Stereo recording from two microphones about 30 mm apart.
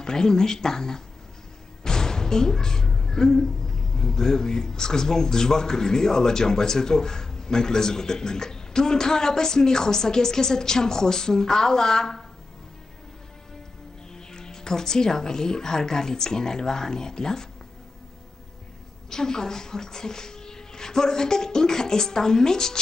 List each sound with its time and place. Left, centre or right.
0.0 s speech: left
14.1 s speech: left
19.0 s speech: centre